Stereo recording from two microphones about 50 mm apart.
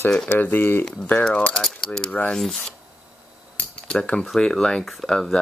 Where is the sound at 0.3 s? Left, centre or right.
Left.